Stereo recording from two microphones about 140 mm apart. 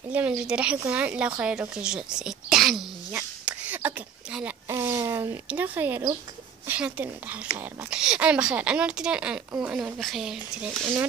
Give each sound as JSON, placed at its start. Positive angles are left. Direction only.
{"t": 0.1, "sound": "speech", "side_deg": -5}
{"t": 3.1, "sound": "a sound", "side_deg": -10}
{"t": 4.6, "sound": "speech", "side_deg": -20}